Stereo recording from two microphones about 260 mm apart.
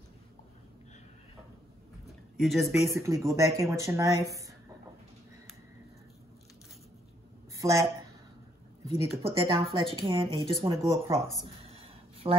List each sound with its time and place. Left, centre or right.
2.3 s speech: centre
2.9 s speech: centre
7.5 s speech: centre
8.9 s speech: centre
12.2 s speech: right